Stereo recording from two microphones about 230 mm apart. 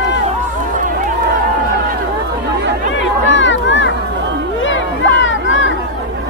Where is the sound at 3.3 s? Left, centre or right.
Left.